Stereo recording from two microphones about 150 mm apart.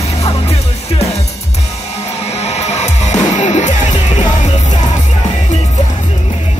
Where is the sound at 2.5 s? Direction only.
45° left (ahead or behind).